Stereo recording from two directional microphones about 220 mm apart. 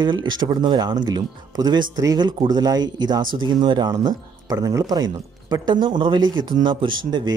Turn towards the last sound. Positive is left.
turn(degrees=-20)  # may be behind; listen again after turning